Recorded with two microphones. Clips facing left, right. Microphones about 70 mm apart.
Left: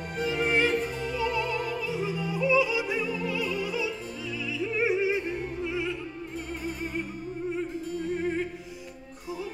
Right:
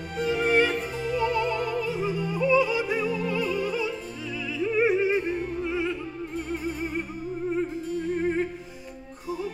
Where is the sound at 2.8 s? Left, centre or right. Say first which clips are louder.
Right 3 dB; centre.